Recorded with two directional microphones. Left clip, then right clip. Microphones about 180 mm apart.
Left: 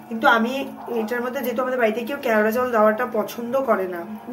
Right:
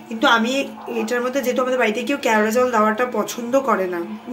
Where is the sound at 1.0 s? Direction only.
50° right (ahead or behind).